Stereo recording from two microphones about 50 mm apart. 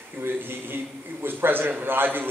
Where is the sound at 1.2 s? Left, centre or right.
Right.